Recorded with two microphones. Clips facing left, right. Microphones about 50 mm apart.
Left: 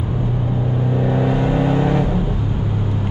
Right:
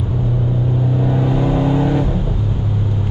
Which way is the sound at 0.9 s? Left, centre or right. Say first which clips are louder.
Left 1 dB; left.